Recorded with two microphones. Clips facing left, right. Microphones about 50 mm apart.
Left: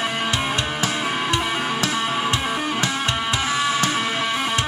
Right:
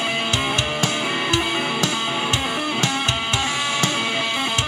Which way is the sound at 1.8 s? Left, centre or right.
Centre.